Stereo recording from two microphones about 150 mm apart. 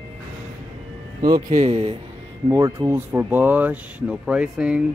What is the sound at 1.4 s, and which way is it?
Speech, 45° right (ahead or behind).